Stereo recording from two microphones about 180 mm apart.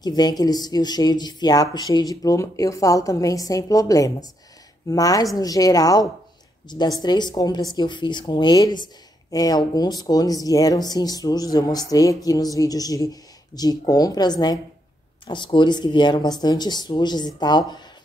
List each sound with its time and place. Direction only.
0.0 s a woman's voice: 20° left (ahead or behind)